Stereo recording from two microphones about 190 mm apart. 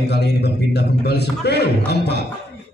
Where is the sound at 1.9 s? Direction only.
60° left (ahead or behind).